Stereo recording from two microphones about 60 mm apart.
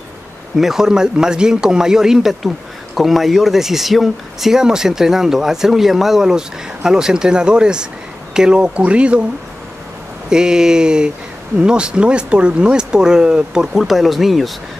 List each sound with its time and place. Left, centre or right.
0.6 s speech: centre
10.3 s speech: centre
13.7 s speech: centre